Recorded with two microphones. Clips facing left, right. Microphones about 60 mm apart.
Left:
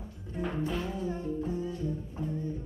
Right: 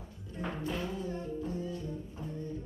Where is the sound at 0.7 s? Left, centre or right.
Centre.